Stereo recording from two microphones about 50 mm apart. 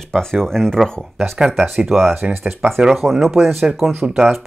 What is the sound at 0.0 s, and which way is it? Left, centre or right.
Speech, centre.